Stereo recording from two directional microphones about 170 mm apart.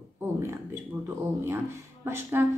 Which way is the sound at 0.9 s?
10° right (ahead or behind).